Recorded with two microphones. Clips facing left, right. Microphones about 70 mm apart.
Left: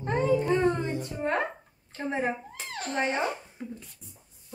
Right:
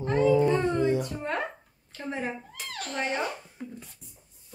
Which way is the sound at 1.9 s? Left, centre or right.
Left.